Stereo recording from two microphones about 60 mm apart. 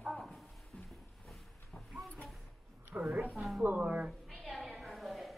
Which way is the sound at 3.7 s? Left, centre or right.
Centre.